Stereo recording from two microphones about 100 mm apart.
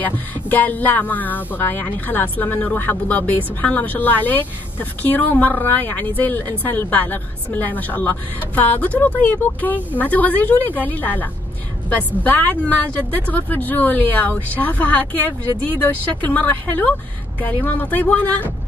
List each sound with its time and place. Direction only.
0.0 s speech: 15° left (ahead or behind)